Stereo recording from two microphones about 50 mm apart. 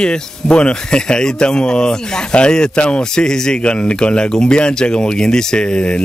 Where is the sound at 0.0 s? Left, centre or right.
Centre.